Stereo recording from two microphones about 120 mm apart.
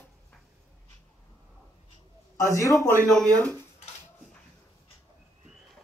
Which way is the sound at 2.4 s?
25° left (ahead or behind).